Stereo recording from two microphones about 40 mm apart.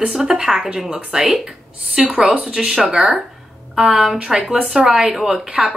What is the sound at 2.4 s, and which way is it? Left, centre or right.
Speech, centre.